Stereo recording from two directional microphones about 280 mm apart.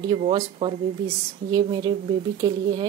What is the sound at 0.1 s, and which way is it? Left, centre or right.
Speech, centre.